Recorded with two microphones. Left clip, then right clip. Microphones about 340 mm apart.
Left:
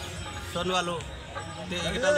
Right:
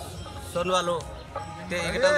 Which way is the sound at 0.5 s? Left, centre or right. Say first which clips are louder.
Right 4 dB; centre.